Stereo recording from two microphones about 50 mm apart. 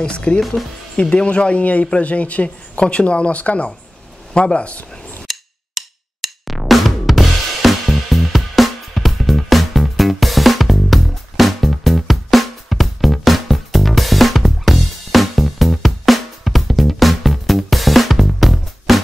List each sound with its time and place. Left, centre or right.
0.0 s a man's voice: left
0.4 s speech: centre
1.1 s a man's voice: left
5.3 s music: centre